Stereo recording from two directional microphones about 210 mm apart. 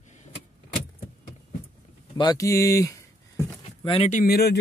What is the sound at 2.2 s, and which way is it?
Speech, 15° left (ahead or behind).